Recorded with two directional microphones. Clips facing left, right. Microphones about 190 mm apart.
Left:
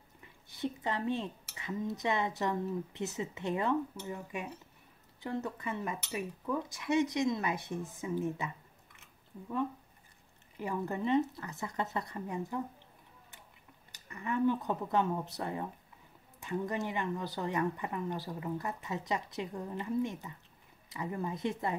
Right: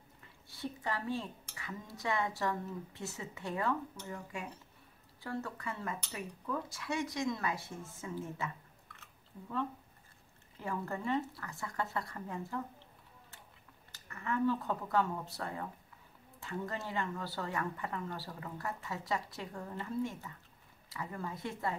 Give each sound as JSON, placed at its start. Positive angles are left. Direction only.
{"t": 0.5, "sound": "a woman's voice", "side_deg": 20}
{"t": 10.6, "sound": "speech", "side_deg": 20}
{"t": 13.9, "sound": "speech", "side_deg": 15}